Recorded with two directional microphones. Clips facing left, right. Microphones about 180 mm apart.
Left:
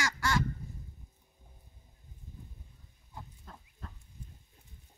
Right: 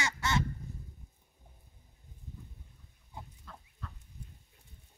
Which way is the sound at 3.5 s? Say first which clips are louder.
Even; 40° left (ahead or behind).